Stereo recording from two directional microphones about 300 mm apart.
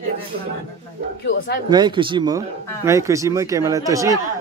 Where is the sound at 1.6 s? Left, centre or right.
Centre.